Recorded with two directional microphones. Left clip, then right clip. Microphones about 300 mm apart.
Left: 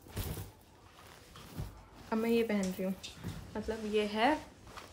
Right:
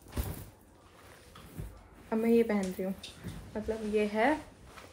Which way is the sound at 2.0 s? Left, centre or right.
Centre.